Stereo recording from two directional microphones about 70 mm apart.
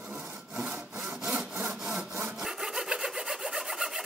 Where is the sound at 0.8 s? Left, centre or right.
Centre.